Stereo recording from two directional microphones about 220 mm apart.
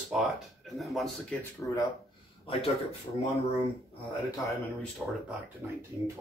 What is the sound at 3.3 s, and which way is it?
Speech, 30° left (ahead or behind).